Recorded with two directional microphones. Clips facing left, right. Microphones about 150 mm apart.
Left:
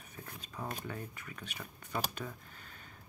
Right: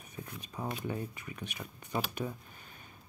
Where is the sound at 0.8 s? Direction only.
20° right (ahead or behind).